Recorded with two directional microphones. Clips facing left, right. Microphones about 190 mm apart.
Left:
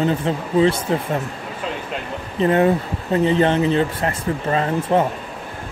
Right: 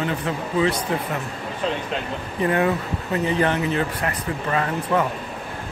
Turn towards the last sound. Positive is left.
turn(degrees=30)  # may be behind; listen again after turning